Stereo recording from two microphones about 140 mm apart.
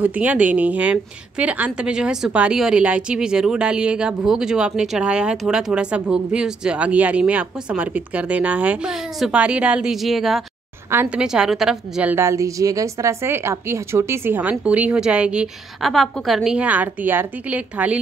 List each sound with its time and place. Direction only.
0.0 s a woman's voice: 10° right (ahead or behind)
10.9 s a woman's voice: 15° right (ahead or behind)
11.2 s a woman's voice: 5° right (ahead or behind)